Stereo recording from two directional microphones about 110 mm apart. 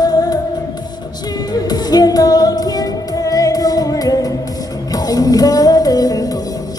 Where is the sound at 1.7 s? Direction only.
35° left (ahead or behind).